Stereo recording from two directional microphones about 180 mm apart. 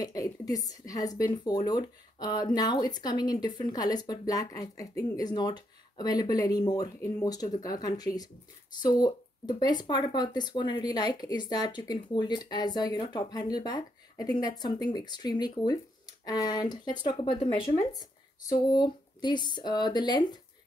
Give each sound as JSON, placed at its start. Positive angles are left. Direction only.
{"t": 0.0, "sound": "speech", "side_deg": 20}